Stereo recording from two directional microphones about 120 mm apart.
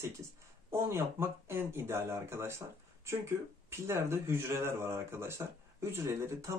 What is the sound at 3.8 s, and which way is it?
Speech, 20° right (ahead or behind).